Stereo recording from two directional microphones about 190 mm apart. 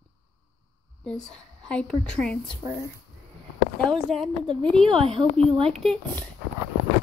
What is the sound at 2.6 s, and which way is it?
Speech, 15° right (ahead or behind).